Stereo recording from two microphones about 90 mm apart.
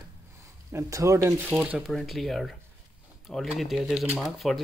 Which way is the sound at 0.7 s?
35° right (ahead or behind).